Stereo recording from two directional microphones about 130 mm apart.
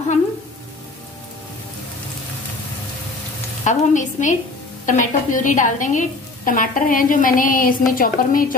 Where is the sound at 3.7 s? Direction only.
75° left (ahead or behind).